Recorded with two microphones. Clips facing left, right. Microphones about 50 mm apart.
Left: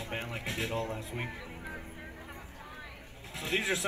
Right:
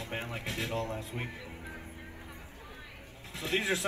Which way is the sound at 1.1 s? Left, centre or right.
Left.